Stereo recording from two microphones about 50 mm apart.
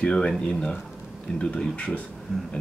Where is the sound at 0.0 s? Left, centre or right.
Left.